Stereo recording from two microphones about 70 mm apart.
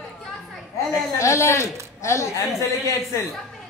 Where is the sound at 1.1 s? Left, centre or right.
Left.